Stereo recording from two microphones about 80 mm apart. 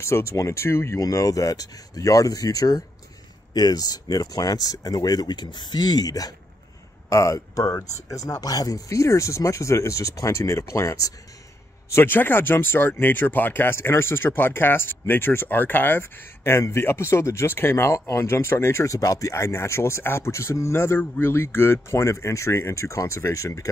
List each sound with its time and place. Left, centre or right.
0.0 s speech: left
7.1 s speech: left
11.9 s speech: left